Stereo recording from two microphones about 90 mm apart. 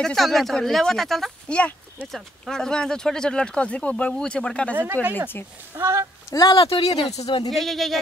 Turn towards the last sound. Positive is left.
turn(degrees=5)  # may be behind; listen again after turning